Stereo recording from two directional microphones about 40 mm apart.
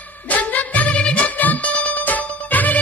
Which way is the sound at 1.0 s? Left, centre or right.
Left.